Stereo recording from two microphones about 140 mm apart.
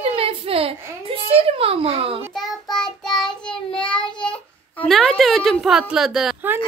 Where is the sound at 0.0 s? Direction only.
40° right (ahead or behind).